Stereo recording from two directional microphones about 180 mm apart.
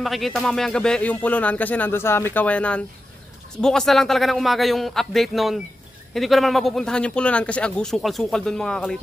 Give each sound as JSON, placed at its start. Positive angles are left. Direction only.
{"t": 0.0, "sound": "speech", "side_deg": 0}